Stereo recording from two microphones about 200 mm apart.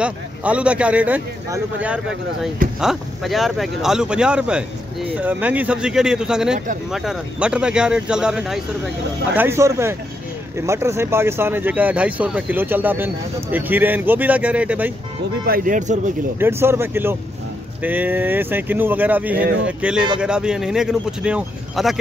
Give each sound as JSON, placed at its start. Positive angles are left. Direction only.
{"t": 0.0, "sound": "speech", "side_deg": -5}
{"t": 15.4, "sound": "speech", "side_deg": -45}
{"t": 16.3, "sound": "speech", "side_deg": -10}